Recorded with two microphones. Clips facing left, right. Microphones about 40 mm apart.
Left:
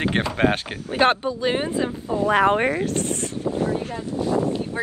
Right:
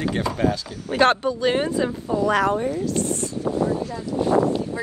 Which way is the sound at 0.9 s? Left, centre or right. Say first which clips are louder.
Right 1 dB; centre.